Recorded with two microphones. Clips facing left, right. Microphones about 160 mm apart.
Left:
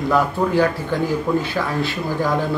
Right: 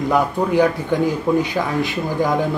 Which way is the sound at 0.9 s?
15° right (ahead or behind).